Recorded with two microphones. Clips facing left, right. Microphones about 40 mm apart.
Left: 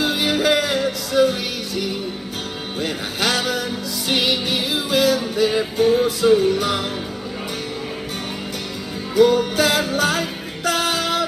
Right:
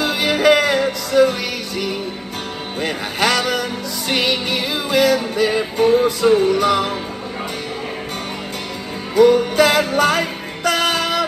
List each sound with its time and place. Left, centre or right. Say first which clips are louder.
0.0 s music: right 3 dB; right
2.8 s a sound: right 4 dB; right
4.1 s music: right 1 dB; right
9.1 s music: right 3 dB; right